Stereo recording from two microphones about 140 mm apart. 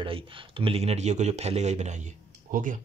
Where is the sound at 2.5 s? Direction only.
65° right (ahead or behind).